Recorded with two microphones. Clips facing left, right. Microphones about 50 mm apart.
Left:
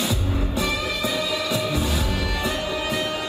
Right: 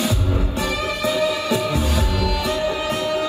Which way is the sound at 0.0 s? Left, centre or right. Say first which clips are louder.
Right 3 dB; right.